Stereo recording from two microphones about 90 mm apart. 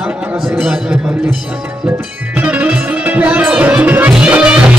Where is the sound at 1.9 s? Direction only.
20° right (ahead or behind).